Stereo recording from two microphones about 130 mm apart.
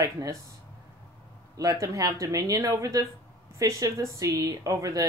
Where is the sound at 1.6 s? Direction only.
25° right (ahead or behind).